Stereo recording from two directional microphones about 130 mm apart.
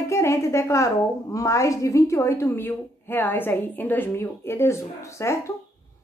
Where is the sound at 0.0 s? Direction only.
25° left (ahead or behind).